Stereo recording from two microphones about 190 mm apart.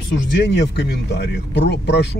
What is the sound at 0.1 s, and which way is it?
Speech, 65° left (ahead or behind).